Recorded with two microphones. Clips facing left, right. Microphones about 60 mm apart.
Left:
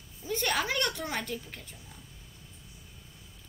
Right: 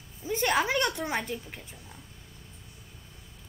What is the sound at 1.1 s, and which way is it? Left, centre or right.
Speech, centre.